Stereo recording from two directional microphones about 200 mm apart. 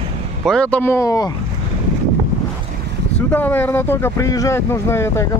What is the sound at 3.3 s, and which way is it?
Speech, 10° left (ahead or behind).